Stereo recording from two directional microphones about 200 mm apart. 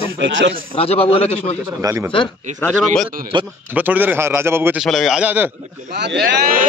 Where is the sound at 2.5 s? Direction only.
40° right (ahead or behind).